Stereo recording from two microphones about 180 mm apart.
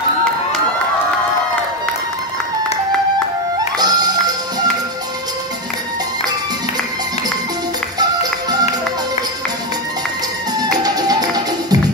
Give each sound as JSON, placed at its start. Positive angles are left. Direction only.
{"t": 3.7, "sound": "music", "side_deg": -20}
{"t": 8.0, "sound": "music", "side_deg": -20}
{"t": 10.6, "sound": "music", "side_deg": -20}